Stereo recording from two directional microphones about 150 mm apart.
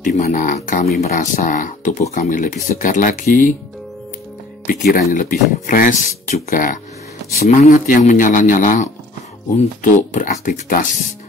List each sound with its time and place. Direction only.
0.0 s speech: 60° left (ahead or behind)
1.0 s speech: 55° left (ahead or behind)
4.9 s speech: 60° left (ahead or behind)
7.4 s speech: 50° left (ahead or behind)
9.9 s speech: 55° left (ahead or behind)